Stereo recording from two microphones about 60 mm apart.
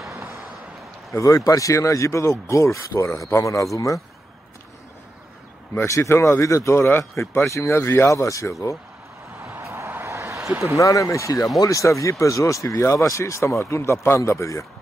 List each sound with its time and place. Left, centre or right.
1.1 s speech: left
5.9 s speech: left
6.9 s speech: left
7.7 s speech: left
8.1 s speech: left
9.6 s a sound: right
10.8 s speech: left